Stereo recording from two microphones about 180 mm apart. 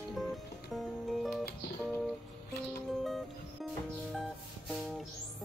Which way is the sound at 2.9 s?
Centre (ahead or behind).